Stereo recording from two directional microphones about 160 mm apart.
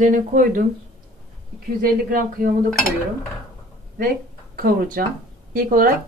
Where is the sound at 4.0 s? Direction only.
65° right (ahead or behind).